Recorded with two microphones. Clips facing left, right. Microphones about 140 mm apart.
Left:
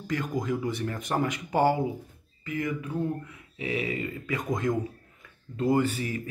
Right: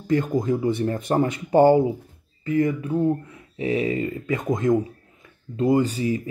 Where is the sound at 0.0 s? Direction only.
25° right (ahead or behind).